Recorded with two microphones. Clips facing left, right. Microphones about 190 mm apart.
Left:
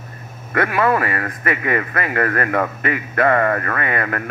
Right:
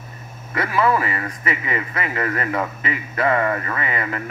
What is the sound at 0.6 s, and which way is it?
A man's voice, 55° left (ahead or behind).